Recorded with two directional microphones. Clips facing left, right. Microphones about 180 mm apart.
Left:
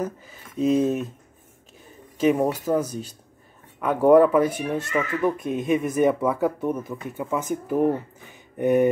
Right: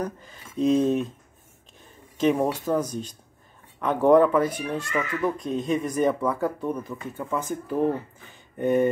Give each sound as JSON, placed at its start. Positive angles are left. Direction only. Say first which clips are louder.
{"t": 0.0, "sound": "speech", "louder": "left 2 dB", "side_deg": 5}
{"t": 2.1, "sound": "speech", "louder": "left 2 dB", "side_deg": 5}
{"t": 4.6, "sound": "speech", "louder": "left 3 dB", "side_deg": 20}
{"t": 5.4, "sound": "speech", "louder": "left 2 dB", "side_deg": 10}